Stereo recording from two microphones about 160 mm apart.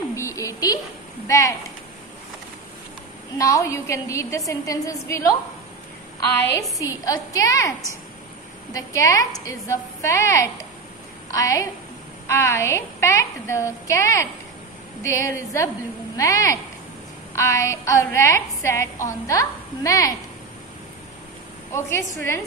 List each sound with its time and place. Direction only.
0.1 s a sound: 20° left (ahead or behind)
1.2 s speech: 20° left (ahead or behind)
3.3 s a woman's voice: 20° left (ahead or behind)
6.8 s a woman's voice: 20° left (ahead or behind)
8.7 s a woman's voice: 20° left (ahead or behind)
21.7 s a woman's voice: 15° left (ahead or behind)